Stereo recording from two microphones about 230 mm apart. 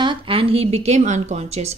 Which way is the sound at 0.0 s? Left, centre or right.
Right.